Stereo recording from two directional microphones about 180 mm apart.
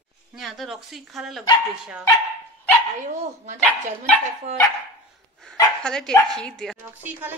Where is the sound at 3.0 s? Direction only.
40° right (ahead or behind).